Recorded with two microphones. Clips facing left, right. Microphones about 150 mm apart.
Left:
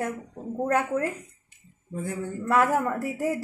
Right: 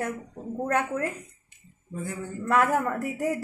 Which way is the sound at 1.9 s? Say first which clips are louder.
Left 2 dB; 55° left (ahead or behind).